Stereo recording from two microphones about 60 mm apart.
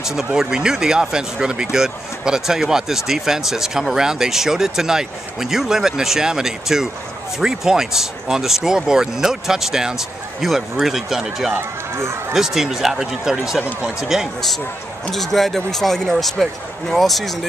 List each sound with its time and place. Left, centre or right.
0.0 s speech: centre
11.5 s speech: right
12.4 s speech: centre